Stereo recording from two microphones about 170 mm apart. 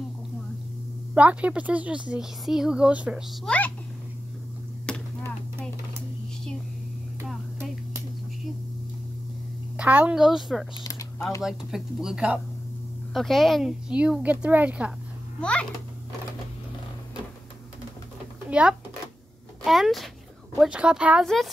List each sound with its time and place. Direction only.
1.1 s speech: 10° right (ahead or behind)
4.8 s chop: 5° left (ahead or behind)
9.8 s speech: 10° right (ahead or behind)
10.8 s typing: 20° left (ahead or behind)
11.4 s speech: 5° right (ahead or behind)
18.5 s a child's voice: 5° right (ahead or behind)